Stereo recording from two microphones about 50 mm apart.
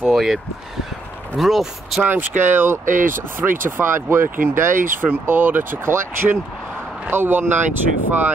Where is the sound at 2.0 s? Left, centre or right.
Right.